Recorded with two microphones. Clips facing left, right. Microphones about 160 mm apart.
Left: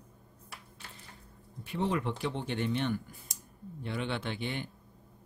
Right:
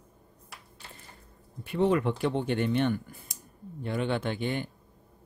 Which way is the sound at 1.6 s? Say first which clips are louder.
Right 7 dB; 55° right (ahead or behind).